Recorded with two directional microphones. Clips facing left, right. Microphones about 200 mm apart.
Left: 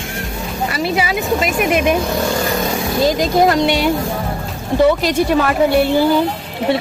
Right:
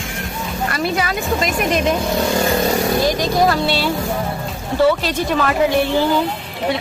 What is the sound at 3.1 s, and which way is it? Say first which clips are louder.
Speech: left 3 dB; 20° left (ahead or behind).